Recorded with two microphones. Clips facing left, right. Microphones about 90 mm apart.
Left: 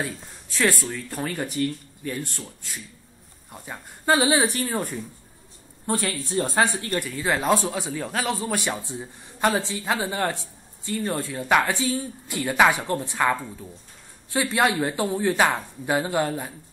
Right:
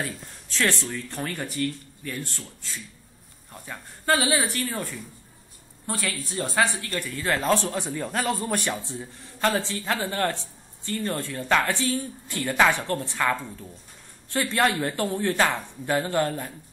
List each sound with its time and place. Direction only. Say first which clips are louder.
0.0 s speech: left 2 dB; 10° left (ahead or behind)
7.7 s speech: even; centre (ahead or behind)
8.9 s speech: left 1 dB; 15° left (ahead or behind)